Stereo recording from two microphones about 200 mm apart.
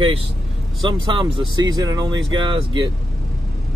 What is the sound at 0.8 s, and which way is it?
Speech, 25° right (ahead or behind).